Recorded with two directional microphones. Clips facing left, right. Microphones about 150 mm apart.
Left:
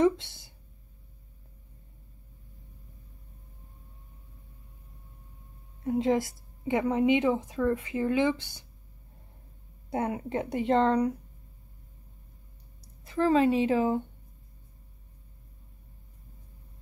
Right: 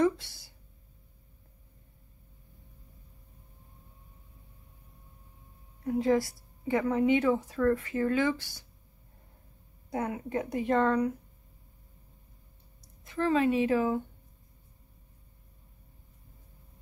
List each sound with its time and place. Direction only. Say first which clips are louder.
0.0 s a sound: left 2 dB; 25° left (ahead or behind)
5.9 s speech: even; 20° left (ahead or behind)
9.8 s speech: left 3 dB; 25° left (ahead or behind)
13.0 s speech: left 3 dB; 30° left (ahead or behind)